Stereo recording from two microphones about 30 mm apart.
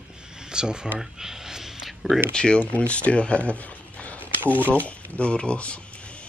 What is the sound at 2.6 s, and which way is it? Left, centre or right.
Speech, left.